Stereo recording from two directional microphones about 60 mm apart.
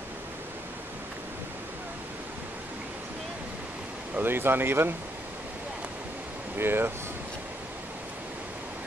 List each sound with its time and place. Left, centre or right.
4.1 s speech: right
6.5 s speech: right